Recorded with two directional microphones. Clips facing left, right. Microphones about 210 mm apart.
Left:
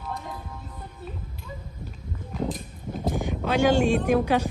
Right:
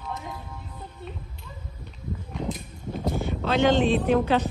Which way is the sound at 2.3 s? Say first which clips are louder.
Left 4 dB; centre (ahead or behind).